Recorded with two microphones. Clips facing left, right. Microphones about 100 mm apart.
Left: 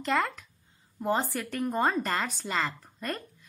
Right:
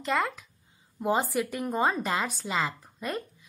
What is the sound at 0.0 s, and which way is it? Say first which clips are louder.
A woman's voice: even; centre (ahead or behind).